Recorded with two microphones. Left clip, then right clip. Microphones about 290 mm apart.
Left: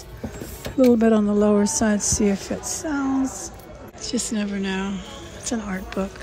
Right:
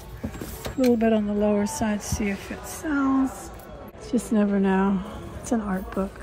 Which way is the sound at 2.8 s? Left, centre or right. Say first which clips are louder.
Right 1 dB; centre.